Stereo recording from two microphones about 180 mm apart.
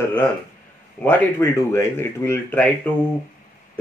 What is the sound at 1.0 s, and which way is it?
Speech, 15° left (ahead or behind).